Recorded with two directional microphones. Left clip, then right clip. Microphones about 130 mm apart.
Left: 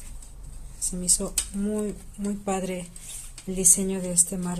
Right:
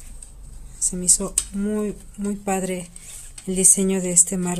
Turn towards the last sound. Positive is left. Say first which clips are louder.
# right 6 dB
turn(degrees=-45)  # may be behind; listen again after turning